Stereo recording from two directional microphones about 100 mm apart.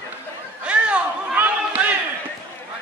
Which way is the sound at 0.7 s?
10° right (ahead or behind).